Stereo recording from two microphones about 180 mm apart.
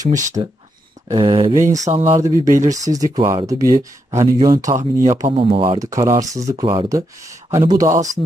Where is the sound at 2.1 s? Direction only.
20° right (ahead or behind).